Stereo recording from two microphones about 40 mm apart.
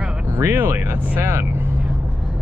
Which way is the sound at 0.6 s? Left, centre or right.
Right.